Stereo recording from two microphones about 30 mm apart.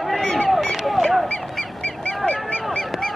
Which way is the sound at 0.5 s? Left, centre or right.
Centre.